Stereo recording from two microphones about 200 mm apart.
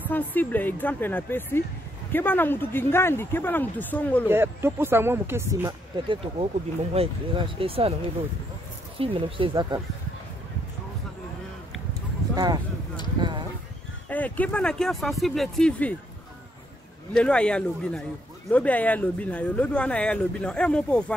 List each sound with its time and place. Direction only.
0.1 s speech: 10° left (ahead or behind)
4.3 s speech: 10° right (ahead or behind); by 7.9 s 30° right (ahead or behind)
8.9 s speech: 25° right (ahead or behind)
13.2 s speech: 20° right (ahead or behind)
14.0 s speech: 10° left (ahead or behind)
17.1 s speech: 5° left (ahead or behind)